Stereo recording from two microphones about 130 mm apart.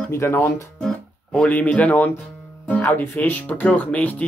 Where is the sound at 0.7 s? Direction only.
Centre (ahead or behind).